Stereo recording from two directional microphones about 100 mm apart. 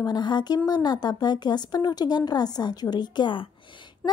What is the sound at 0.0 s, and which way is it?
A woman's voice, 45° left (ahead or behind).